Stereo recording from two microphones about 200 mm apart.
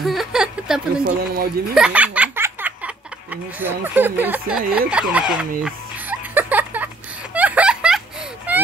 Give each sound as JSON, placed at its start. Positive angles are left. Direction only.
{"t": 0.0, "sound": "a sound", "side_deg": 0}
{"t": 1.0, "sound": "speech", "side_deg": -50}
{"t": 1.8, "sound": "speech", "side_deg": -5}
{"t": 5.6, "sound": "music", "side_deg": -10}
{"t": 7.3, "sound": "a sound", "side_deg": -5}
{"t": 8.5, "sound": "baby cry", "side_deg": -5}